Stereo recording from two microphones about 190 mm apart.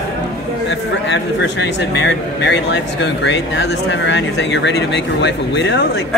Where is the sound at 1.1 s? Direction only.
70° left (ahead or behind).